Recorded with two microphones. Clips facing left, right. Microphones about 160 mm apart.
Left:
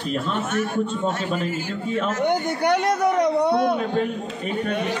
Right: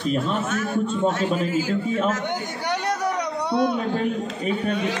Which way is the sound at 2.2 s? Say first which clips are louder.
Left 7 dB; 55° left (ahead or behind).